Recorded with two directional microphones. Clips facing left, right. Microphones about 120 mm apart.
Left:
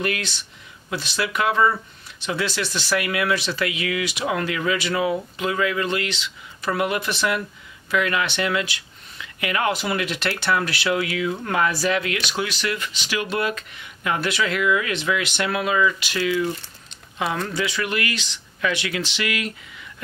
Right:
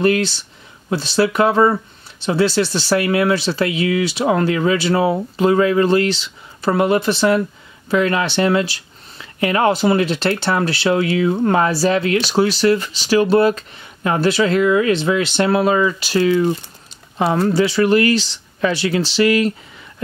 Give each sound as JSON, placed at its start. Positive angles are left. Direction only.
{"t": 0.0, "sound": "speech", "side_deg": -30}